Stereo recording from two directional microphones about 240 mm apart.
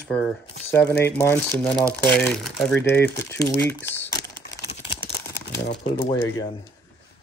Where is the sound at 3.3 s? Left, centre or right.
Centre.